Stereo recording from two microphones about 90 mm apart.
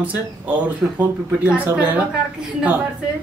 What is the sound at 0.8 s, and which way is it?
Speech, 5° right (ahead or behind).